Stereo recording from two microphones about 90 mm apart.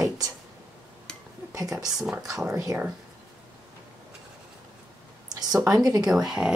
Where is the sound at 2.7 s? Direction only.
25° right (ahead or behind).